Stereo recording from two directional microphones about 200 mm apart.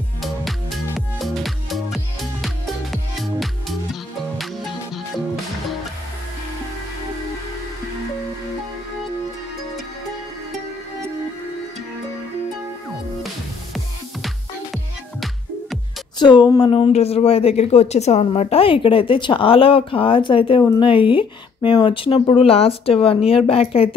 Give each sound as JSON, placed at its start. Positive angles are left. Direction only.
{"t": 0.2, "sound": "music", "side_deg": 0}
{"t": 14.2, "sound": "music", "side_deg": 0}
{"t": 16.2, "sound": "speech", "side_deg": 20}